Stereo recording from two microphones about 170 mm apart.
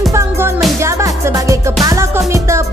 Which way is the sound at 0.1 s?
15° right (ahead or behind).